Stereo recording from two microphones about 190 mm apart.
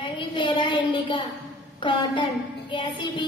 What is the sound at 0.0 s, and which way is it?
A woman's voice, 25° left (ahead or behind).